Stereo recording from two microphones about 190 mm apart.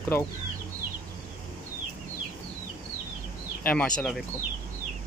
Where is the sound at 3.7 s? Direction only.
5° left (ahead or behind).